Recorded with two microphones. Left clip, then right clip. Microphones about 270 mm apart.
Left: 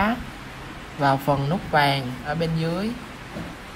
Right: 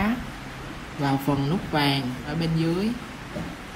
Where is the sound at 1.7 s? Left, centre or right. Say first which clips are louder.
Left 5 dB; centre.